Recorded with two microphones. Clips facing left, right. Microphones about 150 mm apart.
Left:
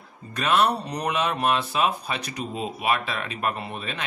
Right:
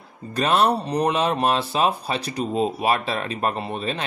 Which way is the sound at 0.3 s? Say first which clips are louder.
Right 3 dB; 35° right (ahead or behind).